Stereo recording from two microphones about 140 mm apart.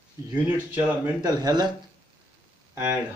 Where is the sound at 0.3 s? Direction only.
10° right (ahead or behind).